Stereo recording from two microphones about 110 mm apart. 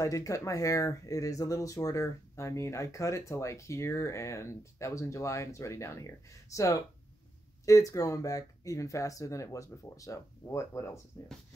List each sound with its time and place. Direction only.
0.0 s speech: 30° left (ahead or behind)